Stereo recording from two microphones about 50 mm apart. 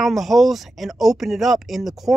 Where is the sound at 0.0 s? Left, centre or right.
Centre.